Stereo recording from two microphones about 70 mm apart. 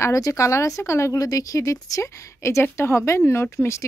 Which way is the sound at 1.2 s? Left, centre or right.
Left.